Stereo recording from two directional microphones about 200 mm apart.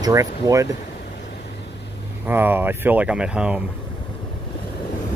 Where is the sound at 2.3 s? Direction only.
10° right (ahead or behind).